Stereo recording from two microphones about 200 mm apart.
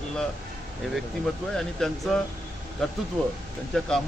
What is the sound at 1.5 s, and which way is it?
Speech, centre (ahead or behind).